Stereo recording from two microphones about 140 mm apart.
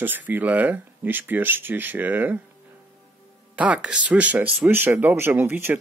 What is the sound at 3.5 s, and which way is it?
Speech, 10° right (ahead or behind).